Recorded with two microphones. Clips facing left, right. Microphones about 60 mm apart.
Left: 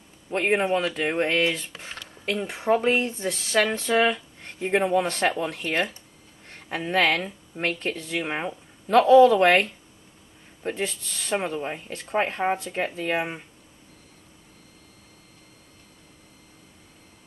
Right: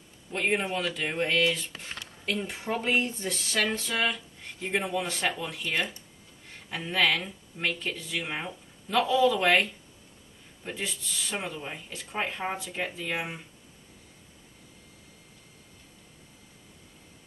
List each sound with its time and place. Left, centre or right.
0.3 s speech: left
3.7 s speech: left
5.0 s speech: left
5.4 s speech: left
6.9 s speech: left
8.2 s speech: left
8.9 s speech: left
11.3 s speech: left
11.9 s speech: left